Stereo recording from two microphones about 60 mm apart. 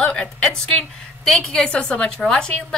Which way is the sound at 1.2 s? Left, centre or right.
Centre.